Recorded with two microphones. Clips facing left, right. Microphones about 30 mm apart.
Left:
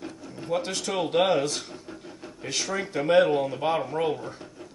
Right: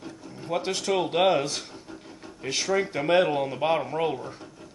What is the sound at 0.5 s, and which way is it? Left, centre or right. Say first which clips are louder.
Speech: right 1 dB; centre.